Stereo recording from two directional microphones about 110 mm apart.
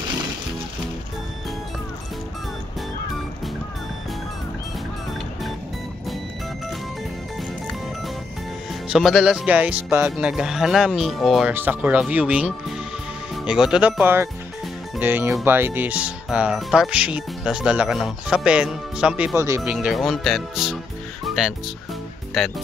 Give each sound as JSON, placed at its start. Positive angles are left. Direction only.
{"t": 8.8, "sound": "speech", "side_deg": -5}
{"t": 11.4, "sound": "speech", "side_deg": -15}
{"t": 13.5, "sound": "speech", "side_deg": -5}
{"t": 19.3, "sound": "speech", "side_deg": -25}
{"t": 19.6, "sound": "speech", "side_deg": -10}
{"t": 22.3, "sound": "speech", "side_deg": 0}